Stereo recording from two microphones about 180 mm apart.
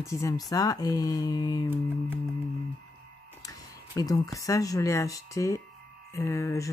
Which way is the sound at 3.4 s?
20° left (ahead or behind).